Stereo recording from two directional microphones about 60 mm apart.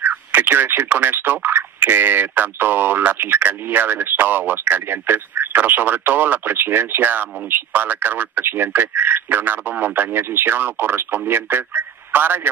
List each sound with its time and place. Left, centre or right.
0.0 s speech: right